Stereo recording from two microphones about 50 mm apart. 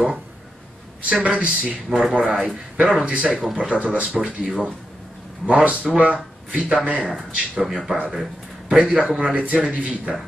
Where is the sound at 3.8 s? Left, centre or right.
Right.